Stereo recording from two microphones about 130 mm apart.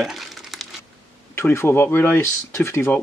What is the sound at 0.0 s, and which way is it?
Crumpling, centre (ahead or behind).